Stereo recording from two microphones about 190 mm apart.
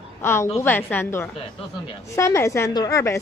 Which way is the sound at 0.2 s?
15° left (ahead or behind).